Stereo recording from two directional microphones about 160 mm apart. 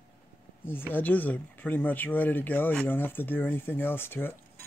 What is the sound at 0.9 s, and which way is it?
Speech, 10° left (ahead or behind).